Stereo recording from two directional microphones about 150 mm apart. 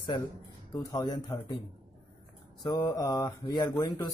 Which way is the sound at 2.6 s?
25° left (ahead or behind).